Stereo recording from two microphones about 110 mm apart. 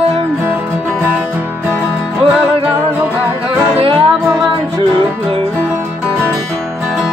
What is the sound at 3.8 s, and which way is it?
Music, 55° right (ahead or behind).